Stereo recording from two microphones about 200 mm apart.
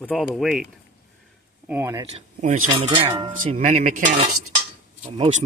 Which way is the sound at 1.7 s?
15° right (ahead or behind).